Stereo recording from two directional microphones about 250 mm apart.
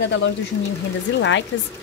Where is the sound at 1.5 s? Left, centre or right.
Left.